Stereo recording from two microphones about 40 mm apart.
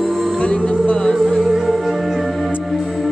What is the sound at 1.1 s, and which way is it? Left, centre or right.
Music, centre.